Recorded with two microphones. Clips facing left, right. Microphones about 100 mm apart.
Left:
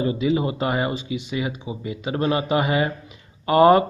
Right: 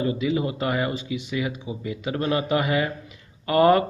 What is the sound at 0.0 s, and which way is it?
Speech, 25° left (ahead or behind).